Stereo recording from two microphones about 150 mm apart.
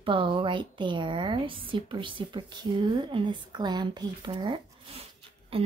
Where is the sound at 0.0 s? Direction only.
35° right (ahead or behind).